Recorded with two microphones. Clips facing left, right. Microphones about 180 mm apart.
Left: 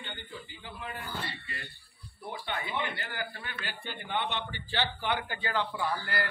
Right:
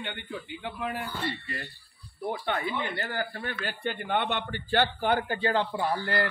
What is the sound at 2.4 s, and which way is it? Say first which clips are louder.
A man's voice: right 1 dB; 45° right (ahead or behind).